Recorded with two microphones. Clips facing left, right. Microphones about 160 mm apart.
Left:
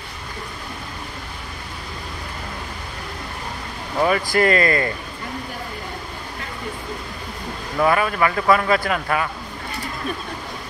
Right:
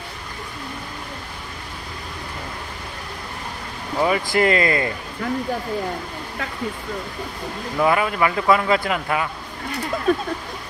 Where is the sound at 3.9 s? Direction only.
15° right (ahead or behind).